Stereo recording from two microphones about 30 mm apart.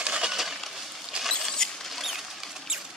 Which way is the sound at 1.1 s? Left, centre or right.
Right.